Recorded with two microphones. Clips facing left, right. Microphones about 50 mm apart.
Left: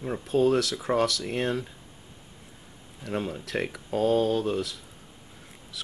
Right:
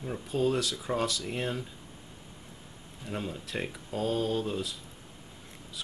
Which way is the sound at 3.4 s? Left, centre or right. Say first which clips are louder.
Left 5 dB; left.